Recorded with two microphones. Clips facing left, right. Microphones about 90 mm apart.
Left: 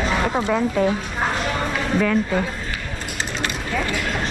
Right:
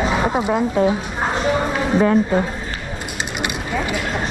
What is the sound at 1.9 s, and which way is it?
Speech, 35° right (ahead or behind).